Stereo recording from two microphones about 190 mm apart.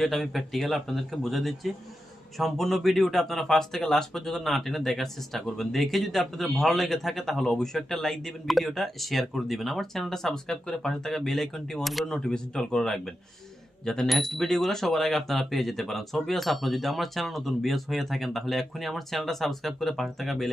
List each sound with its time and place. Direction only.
0.0 s speech: centre (ahead or behind)